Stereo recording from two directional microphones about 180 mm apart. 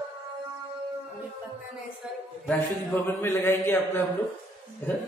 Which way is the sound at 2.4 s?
10° left (ahead or behind).